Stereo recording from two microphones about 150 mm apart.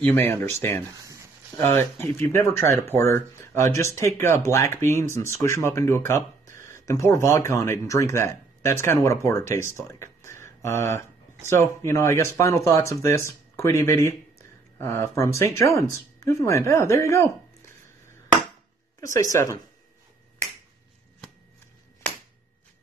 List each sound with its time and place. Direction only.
0.0 s speech: 15° left (ahead or behind)
0.8 s a sound: 20° right (ahead or behind)
1.8 s speech: 15° left (ahead or behind)
18.9 s speech: 20° left (ahead or behind)